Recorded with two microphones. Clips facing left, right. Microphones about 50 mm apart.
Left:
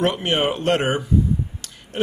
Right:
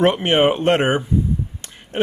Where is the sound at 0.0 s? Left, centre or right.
Right.